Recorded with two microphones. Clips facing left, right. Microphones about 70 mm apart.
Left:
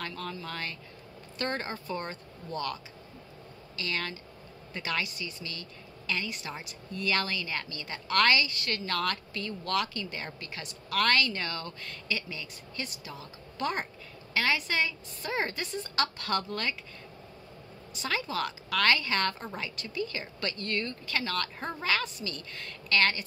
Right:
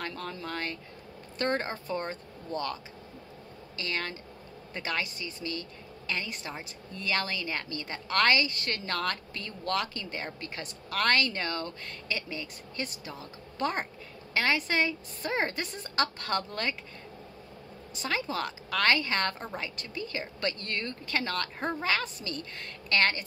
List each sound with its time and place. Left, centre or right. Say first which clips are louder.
0.0 s a woman's voice: right 1 dB; right
18.0 s a woman's voice: even; right